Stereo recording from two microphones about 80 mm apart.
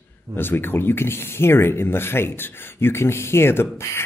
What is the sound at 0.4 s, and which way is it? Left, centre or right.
Speech, left.